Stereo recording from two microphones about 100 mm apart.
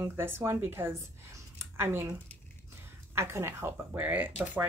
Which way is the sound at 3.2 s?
25° right (ahead or behind).